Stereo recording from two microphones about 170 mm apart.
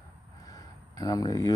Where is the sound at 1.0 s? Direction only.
20° left (ahead or behind).